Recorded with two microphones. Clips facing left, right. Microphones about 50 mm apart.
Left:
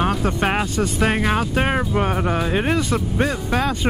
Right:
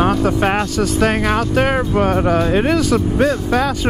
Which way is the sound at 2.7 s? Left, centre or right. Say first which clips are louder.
Right 5 dB; centre.